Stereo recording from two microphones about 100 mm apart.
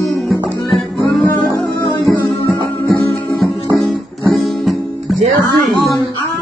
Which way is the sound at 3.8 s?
Centre (ahead or behind).